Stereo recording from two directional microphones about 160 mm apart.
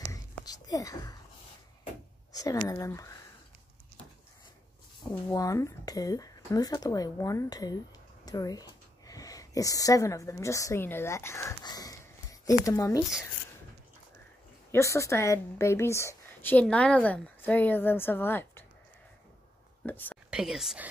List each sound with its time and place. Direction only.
0.1 s whispering: 20° left (ahead or behind)
2.3 s speech: 20° left (ahead or behind)
5.3 s speech: 20° left (ahead or behind)
14.7 s a woman's voice: 20° left (ahead or behind)
19.8 s speech: 10° left (ahead or behind)
20.2 s speech: 5° right (ahead or behind)